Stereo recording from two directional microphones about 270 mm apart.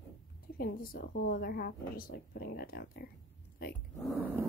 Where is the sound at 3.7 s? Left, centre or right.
Centre.